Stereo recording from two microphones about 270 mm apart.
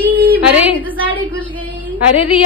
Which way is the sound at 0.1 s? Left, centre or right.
Centre.